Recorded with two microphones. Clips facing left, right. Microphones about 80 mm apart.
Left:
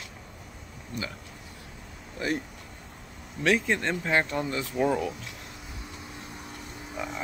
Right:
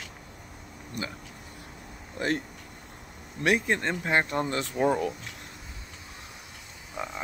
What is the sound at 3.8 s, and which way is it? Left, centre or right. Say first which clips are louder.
Speech: even; right.